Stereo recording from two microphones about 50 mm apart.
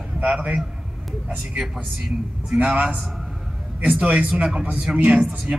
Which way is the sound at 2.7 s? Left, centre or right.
Right.